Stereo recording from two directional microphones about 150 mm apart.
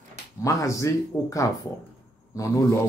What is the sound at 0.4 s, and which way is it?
Speech, 20° left (ahead or behind).